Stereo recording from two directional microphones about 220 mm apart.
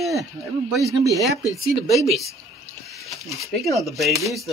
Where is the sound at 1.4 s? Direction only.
15° left (ahead or behind).